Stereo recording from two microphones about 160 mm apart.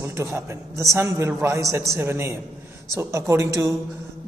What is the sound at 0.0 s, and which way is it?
A man's voice, 20° right (ahead or behind).